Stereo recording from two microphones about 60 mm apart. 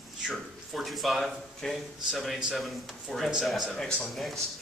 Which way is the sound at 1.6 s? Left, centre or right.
Centre.